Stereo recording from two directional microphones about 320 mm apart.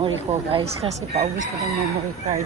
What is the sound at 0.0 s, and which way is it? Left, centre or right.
Speech, centre.